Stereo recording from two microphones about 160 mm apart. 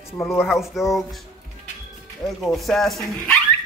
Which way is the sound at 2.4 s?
Centre (ahead or behind).